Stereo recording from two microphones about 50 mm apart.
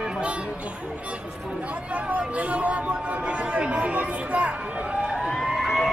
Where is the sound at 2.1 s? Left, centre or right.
Right.